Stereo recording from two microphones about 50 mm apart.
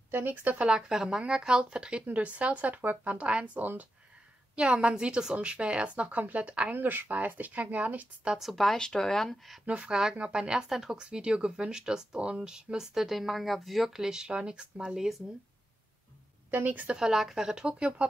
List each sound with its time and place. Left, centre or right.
0.1 s speech: right
0.7 s a woman's voice: centre
6.7 s speech: right
8.4 s speech: centre
8.7 s speech: centre
9.7 s a woman's voice: centre
10.7 s speech: centre
11.0 s speech: centre
16.4 s speech: right
16.9 s speech: centre
17.6 s a woman's voice: right